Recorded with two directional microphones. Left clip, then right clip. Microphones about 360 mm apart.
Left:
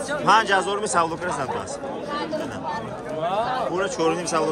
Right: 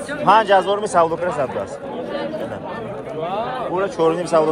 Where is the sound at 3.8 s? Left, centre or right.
Centre.